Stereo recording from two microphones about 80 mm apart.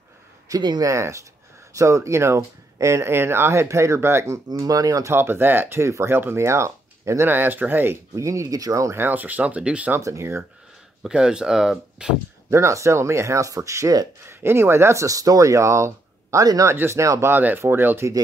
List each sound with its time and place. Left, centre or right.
0.6 s speech: right
0.8 s speech: right
4.6 s speech: right
5.1 s speech: right
7.3 s speech: right
8.2 s speech: right
9.0 s speech: right
9.9 s speech: right
11.0 s speech: centre
12.4 s speech: right
14.3 s speech: right
16.7 s speech: right
17.0 s speech: right
17.3 s speech: right